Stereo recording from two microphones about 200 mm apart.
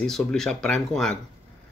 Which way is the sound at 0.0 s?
Centre (ahead or behind).